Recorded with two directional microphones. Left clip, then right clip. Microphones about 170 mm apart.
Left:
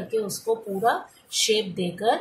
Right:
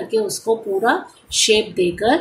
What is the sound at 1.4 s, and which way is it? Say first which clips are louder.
Speech: right 8 dB; 40° right (ahead or behind).